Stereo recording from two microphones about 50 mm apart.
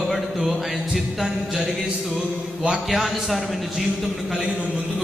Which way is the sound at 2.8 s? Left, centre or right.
Centre.